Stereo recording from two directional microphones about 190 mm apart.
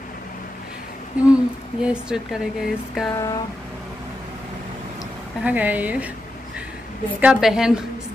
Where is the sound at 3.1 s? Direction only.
20° left (ahead or behind).